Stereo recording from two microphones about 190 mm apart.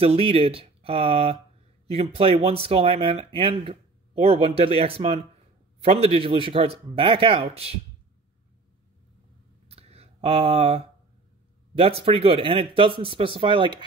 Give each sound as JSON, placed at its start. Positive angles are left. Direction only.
{"t": 0.0, "sound": "a man's voice", "side_deg": -30}
{"t": 9.7, "sound": "a sound", "side_deg": -30}
{"t": 11.7, "sound": "speech", "side_deg": -30}